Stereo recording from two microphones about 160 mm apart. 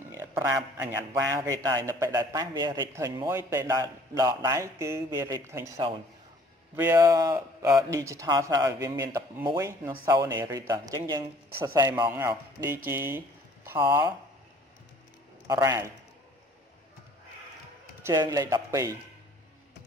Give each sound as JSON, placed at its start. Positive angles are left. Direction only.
{"t": 0.1, "sound": "a man's voice", "side_deg": -15}
{"t": 9.6, "sound": "a man's voice", "side_deg": -15}
{"t": 15.4, "sound": "a man's voice", "side_deg": -20}
{"t": 18.0, "sound": "a man's voice", "side_deg": -20}